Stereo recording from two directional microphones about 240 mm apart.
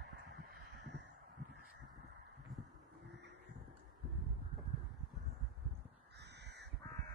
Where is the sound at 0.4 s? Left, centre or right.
Right.